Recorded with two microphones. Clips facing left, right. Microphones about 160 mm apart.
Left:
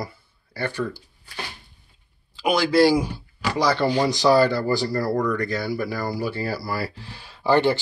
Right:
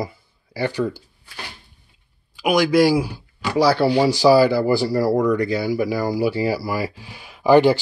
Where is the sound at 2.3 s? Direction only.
15° right (ahead or behind).